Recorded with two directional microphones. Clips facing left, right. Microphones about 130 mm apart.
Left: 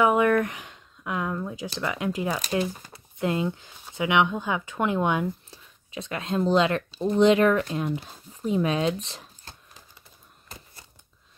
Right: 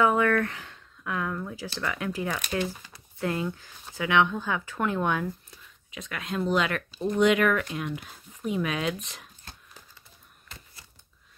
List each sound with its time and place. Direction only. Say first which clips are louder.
0.0 s speech: left 2 dB; 15° left (ahead or behind)
5.5 s speech: left 6 dB; 30° left (ahead or behind)